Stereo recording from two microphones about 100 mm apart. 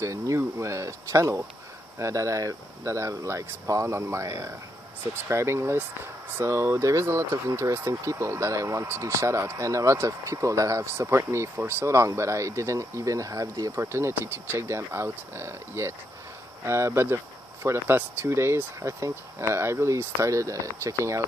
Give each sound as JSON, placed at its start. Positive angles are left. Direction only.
{"t": 0.0, "sound": "speech", "side_deg": -30}